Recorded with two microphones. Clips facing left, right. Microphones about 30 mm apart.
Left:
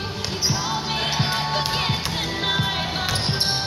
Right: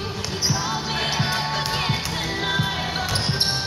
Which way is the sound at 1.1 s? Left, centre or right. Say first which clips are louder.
Left 1 dB; left.